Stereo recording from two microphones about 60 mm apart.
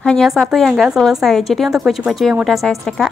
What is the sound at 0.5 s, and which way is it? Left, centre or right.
Speech, centre.